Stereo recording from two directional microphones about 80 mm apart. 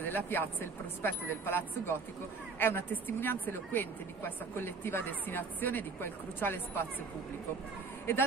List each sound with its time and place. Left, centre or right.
0.1 s speech: left